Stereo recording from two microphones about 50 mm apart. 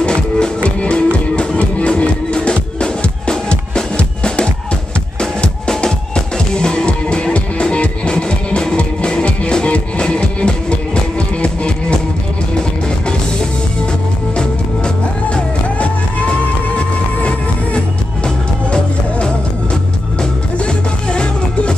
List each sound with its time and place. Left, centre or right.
0.0 s music: centre
18.2 s music: centre